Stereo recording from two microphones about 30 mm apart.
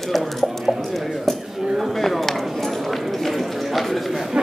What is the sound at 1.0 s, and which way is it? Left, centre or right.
Speech, centre.